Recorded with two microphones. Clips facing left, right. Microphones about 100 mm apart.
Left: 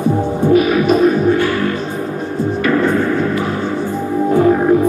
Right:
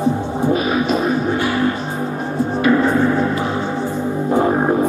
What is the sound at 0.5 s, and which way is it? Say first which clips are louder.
Music: left 8 dB; 30° right (ahead or behind).